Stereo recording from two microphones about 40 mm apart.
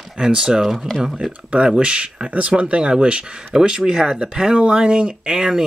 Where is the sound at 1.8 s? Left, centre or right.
Right.